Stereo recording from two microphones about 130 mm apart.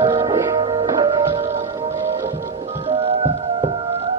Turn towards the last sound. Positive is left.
turn(degrees=-45)  # may be behind; listen again after turning